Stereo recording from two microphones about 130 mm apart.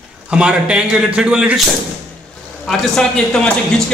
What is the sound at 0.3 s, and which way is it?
A man's voice, 10° right (ahead or behind).